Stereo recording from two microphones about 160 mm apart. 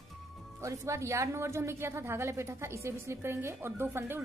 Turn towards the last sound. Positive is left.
turn(degrees=-15)  # may be behind; listen again after turning